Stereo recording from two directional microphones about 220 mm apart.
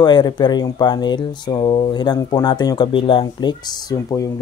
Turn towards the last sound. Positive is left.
turn(degrees=15)  # may be behind; listen again after turning